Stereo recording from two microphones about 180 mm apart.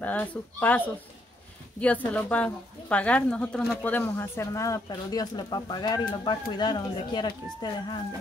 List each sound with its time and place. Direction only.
0.0 s speech: 10° left (ahead or behind); by 8.0 s 25° left (ahead or behind)